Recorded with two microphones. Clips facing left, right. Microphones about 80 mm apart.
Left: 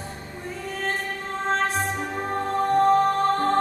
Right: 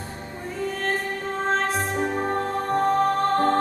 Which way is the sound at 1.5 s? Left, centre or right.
Centre.